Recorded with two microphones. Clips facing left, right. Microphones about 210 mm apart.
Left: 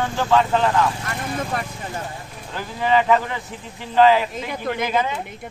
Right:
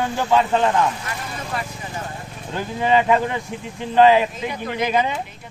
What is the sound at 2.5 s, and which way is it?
Speech, 20° right (ahead or behind).